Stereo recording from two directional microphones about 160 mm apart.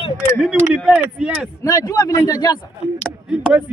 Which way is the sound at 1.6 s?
20° left (ahead or behind).